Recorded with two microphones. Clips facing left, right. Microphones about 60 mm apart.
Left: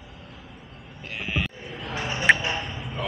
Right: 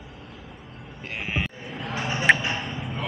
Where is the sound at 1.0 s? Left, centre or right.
Right.